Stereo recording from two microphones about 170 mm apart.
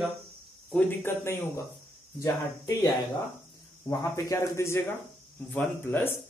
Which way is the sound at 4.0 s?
15° left (ahead or behind).